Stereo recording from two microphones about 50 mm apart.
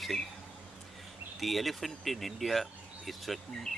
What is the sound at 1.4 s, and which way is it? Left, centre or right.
Speech, centre.